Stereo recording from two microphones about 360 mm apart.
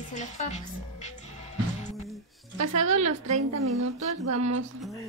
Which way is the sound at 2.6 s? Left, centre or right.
Right.